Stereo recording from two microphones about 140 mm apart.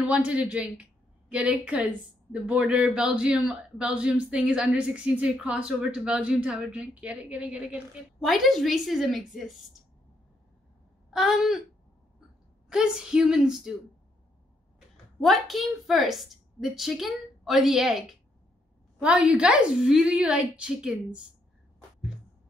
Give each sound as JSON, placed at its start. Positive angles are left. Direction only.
{"t": 0.0, "sound": "a man's voice", "side_deg": -10}
{"t": 11.1, "sound": "a sound", "side_deg": 0}
{"t": 12.6, "sound": "a woman's voice", "side_deg": -5}
{"t": 15.1, "sound": "a woman's voice", "side_deg": 0}